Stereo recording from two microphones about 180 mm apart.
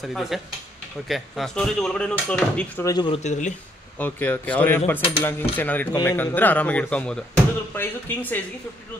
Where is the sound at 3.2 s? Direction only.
40° left (ahead or behind).